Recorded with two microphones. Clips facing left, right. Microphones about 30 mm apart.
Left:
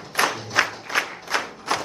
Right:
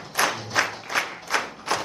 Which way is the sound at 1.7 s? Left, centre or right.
Left.